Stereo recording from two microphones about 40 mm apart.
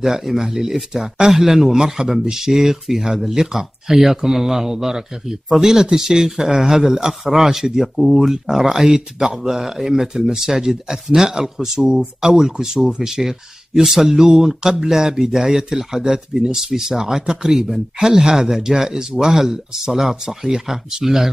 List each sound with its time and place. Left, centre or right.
0.0 s speech: centre